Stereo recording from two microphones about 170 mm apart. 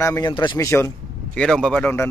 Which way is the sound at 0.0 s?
15° left (ahead or behind).